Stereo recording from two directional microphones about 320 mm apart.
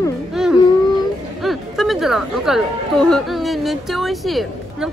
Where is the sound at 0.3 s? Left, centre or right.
Centre.